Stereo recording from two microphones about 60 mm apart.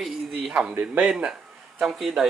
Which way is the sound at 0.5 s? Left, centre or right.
Centre.